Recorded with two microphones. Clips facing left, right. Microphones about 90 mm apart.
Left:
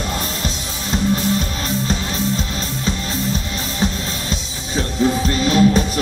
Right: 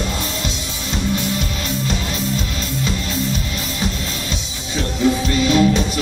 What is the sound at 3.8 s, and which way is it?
Music, 35° left (ahead or behind).